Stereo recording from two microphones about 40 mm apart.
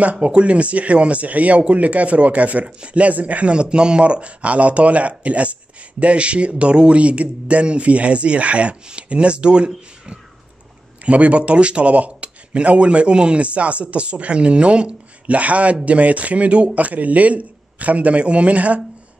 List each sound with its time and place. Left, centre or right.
0.0 s a man's voice: right
3.5 s a man's voice: right
11.1 s a man's voice: right